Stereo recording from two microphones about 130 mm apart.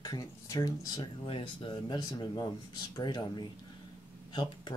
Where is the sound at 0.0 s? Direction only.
30° left (ahead or behind).